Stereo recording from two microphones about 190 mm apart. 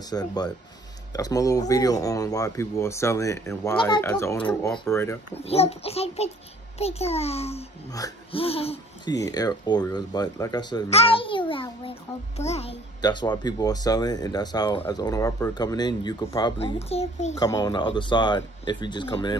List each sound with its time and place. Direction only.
0.1 s speech: 20° left (ahead or behind)
5.3 s a child's voice: 30° left (ahead or behind)
9.1 s speech: 20° left (ahead or behind); by 12.7 s 35° left (ahead or behind)
13.0 s speech: 25° left (ahead or behind)
17.4 s speech: 20° left (ahead or behind)